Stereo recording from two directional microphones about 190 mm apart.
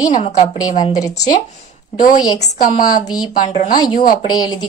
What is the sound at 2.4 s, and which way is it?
Speech, 45° left (ahead or behind).